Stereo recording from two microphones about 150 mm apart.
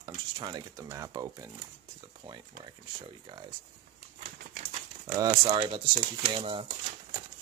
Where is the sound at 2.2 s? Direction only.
35° right (ahead or behind).